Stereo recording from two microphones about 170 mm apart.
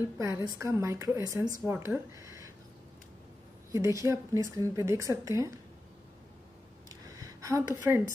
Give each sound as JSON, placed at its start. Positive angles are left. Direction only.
{"t": 0.2, "sound": "a woman's voice", "side_deg": -15}
{"t": 3.7, "sound": "a woman's voice", "side_deg": -20}
{"t": 7.2, "sound": "a sound", "side_deg": -20}